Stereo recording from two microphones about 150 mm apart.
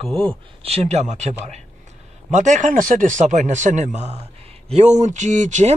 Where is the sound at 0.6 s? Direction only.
45° right (ahead or behind).